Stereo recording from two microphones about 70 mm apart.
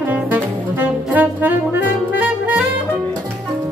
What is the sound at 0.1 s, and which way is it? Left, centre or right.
Brass instrument, right.